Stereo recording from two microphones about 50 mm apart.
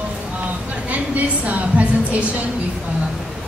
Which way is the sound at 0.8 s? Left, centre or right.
Right.